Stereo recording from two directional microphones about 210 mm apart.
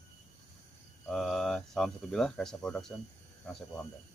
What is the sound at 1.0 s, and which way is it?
Speech, centre (ahead or behind).